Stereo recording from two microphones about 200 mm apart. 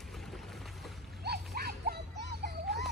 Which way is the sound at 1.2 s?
50° right (ahead or behind).